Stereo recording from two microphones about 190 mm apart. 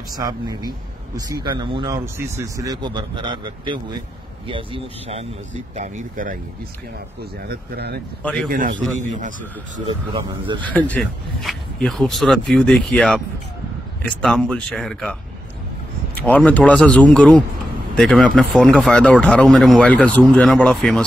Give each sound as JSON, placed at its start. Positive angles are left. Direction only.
{"t": 0.1, "sound": "speech", "side_deg": -20}
{"t": 5.8, "sound": "speech", "side_deg": -45}
{"t": 7.4, "sound": "speech", "side_deg": -55}
{"t": 8.2, "sound": "speech", "side_deg": 5}
{"t": 8.5, "sound": "a man's voice", "side_deg": -45}
{"t": 10.1, "sound": "speech", "side_deg": -25}
{"t": 10.7, "sound": "speech", "side_deg": 5}
{"t": 16.3, "sound": "speech", "side_deg": 5}